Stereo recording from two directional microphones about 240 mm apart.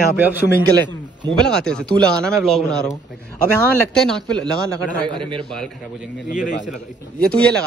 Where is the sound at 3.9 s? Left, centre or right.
Centre.